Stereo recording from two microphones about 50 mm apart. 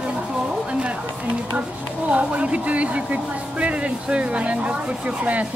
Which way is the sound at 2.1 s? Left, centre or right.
Right.